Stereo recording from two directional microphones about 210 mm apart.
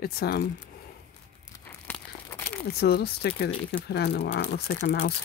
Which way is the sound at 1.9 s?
10° left (ahead or behind).